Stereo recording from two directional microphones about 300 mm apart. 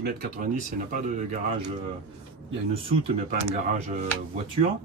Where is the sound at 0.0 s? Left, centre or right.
Right.